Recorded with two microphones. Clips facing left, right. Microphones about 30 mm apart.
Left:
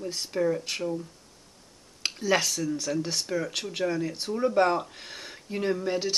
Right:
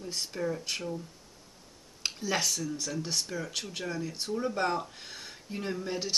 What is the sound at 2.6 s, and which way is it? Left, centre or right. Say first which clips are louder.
Speech: left 6 dB; left.